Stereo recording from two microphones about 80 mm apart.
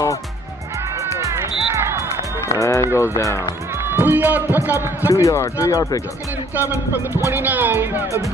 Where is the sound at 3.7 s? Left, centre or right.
Right.